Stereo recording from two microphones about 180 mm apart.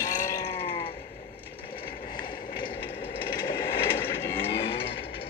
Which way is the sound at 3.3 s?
25° left (ahead or behind).